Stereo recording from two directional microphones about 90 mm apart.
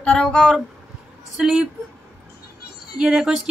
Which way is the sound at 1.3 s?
10° right (ahead or behind).